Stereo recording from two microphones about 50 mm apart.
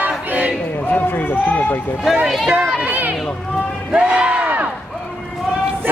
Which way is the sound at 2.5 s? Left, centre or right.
Centre.